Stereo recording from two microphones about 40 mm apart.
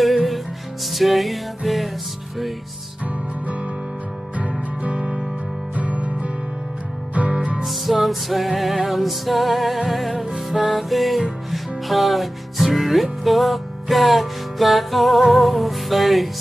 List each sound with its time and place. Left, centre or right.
0.0 s music: centre
5.8 s music: right
7.6 s music: centre